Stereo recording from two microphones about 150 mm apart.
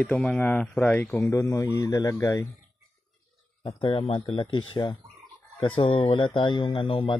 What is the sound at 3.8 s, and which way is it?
Speech, 35° left (ahead or behind).